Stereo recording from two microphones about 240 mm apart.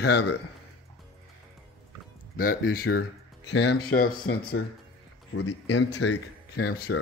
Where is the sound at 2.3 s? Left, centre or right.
Left.